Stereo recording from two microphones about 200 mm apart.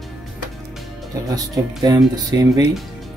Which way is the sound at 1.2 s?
15° right (ahead or behind).